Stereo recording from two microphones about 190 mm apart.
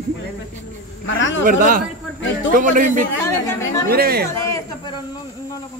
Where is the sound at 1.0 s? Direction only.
85° left.